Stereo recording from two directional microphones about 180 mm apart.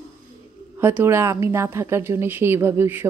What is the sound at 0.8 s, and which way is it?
A woman's voice, 15° right (ahead or behind).